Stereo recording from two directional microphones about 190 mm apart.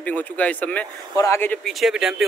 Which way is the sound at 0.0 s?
10° left (ahead or behind).